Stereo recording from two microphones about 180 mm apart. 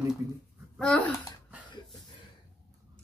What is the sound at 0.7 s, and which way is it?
Speech, 5° left (ahead or behind).